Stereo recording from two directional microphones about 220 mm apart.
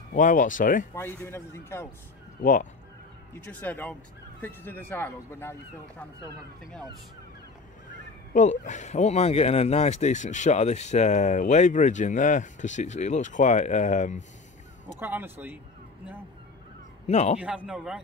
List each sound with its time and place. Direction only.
0.1 s speech: 35° left (ahead or behind)
0.9 s speech: 10° left (ahead or behind)
2.4 s speech: 35° left (ahead or behind)
3.3 s speech: 10° left (ahead or behind)
8.3 s speech: 35° left (ahead or behind)
15.0 s speech: 10° right (ahead or behind)
17.1 s speech: 30° left (ahead or behind)
17.6 s a man's voice: centre (ahead or behind)